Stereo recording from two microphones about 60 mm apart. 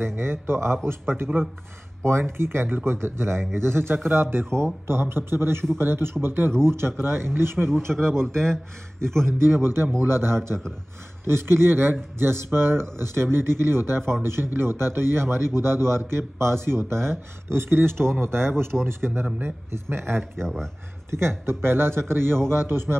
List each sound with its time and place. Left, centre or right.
0.0 s a man's voice: right
20.4 s speech: centre
21.1 s a man's voice: right